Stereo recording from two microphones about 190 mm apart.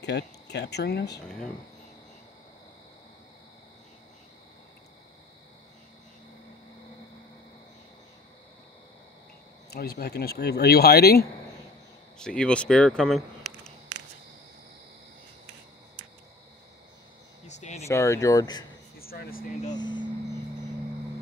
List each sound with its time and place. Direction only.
0.0 s speech: 65° left (ahead or behind)
1.2 s speech: 5° left (ahead or behind)
9.7 s speech: 55° left (ahead or behind)
12.2 s speech: 5° left (ahead or behind)
17.5 s a sound: 35° left (ahead or behind)
17.8 s speech: 15° left (ahead or behind)
18.9 s speech: 50° left (ahead or behind)
19.7 s speech: 25° left (ahead or behind)